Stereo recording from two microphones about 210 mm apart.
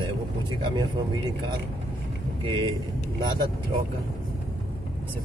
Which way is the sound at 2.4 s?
25° right (ahead or behind).